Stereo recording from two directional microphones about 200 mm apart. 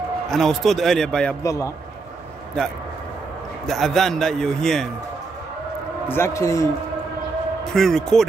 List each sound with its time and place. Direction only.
0.3 s a man's voice: centre (ahead or behind)
1.4 s a man's voice: 15° left (ahead or behind)
3.6 s a man's voice: centre (ahead or behind)
6.0 s a man's voice: 10° left (ahead or behind)
7.7 s a man's voice: 5° left (ahead or behind)